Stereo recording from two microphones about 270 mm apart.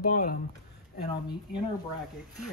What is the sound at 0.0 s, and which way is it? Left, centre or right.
Speech, left.